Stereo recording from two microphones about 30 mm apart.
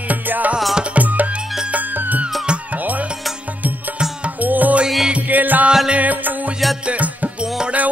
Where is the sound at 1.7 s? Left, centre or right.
Right.